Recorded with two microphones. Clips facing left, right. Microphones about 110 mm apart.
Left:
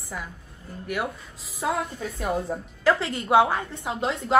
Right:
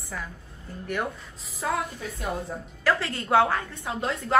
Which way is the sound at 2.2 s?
25° left (ahead or behind).